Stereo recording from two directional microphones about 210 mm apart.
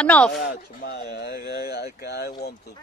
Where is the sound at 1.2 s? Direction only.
50° left (ahead or behind).